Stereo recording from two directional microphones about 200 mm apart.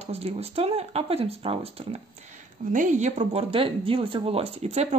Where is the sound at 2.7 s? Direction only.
40° right (ahead or behind).